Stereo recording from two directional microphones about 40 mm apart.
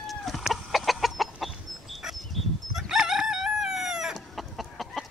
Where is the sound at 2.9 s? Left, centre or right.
Centre.